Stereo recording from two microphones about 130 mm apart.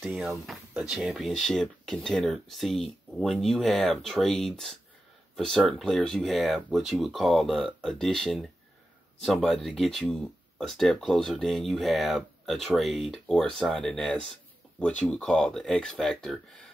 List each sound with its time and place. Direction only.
0.0 s speech: 10° right (ahead or behind)